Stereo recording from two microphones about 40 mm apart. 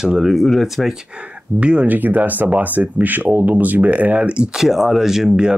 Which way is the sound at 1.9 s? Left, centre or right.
Right.